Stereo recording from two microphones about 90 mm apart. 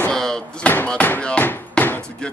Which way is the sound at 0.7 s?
15° left (ahead or behind).